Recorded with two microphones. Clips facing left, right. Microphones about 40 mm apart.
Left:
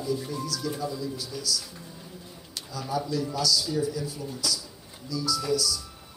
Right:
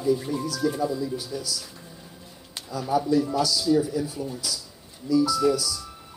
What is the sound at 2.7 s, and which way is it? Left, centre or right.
Speech, right.